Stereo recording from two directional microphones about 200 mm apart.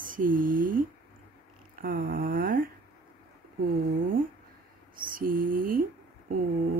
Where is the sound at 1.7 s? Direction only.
45° right (ahead or behind).